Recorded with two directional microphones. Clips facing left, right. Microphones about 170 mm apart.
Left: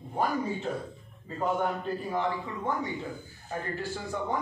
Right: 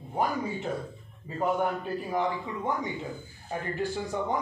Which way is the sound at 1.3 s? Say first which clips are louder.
Right 1 dB; 15° right (ahead or behind).